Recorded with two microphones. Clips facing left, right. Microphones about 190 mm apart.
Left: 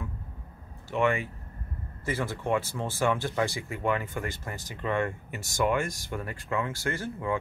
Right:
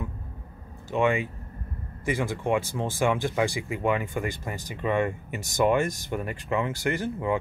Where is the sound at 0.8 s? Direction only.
15° right (ahead or behind).